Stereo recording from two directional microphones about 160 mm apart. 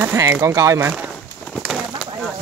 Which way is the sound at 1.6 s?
5° right (ahead or behind).